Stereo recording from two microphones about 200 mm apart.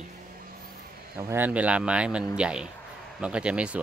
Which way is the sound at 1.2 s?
10° right (ahead or behind).